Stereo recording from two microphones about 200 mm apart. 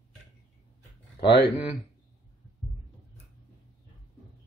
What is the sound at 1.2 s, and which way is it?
Speech, 55° left (ahead or behind).